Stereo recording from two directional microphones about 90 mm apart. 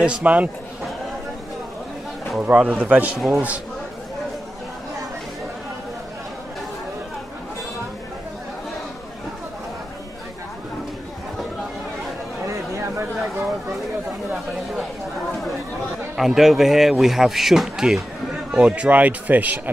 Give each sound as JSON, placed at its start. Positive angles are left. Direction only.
{"t": 0.0, "sound": "a man's voice", "side_deg": -15}
{"t": 2.4, "sound": "a man's voice", "side_deg": -15}
{"t": 12.4, "sound": "a sound", "side_deg": -30}
{"t": 16.2, "sound": "a man's voice", "side_deg": 0}